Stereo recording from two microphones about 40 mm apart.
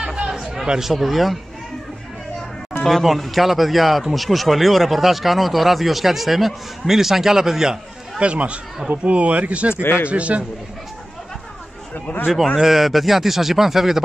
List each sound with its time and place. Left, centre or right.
0.0 s chatter: centre
0.7 s speech: centre
2.8 s speech: centre
8.2 s speech: right
9.8 s a man's voice: left
10.0 s speech: right
12.1 s a man's voice: left
12.5 s speech: centre